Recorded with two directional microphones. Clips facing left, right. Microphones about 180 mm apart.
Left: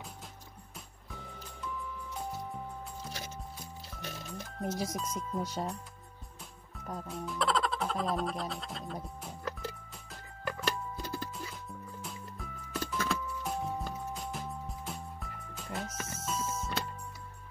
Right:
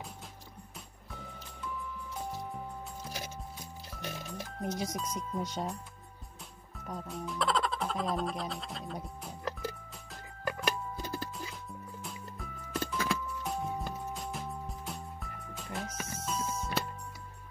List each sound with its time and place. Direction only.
3.0 s music: 5° right (ahead or behind)
6.9 s speech: centre (ahead or behind)
10.5 s music: 5° right (ahead or behind)